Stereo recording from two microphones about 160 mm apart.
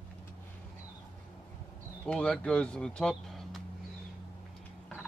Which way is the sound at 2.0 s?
5° left (ahead or behind).